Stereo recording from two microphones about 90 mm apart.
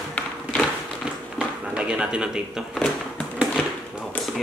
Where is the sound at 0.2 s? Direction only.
15° left (ahead or behind).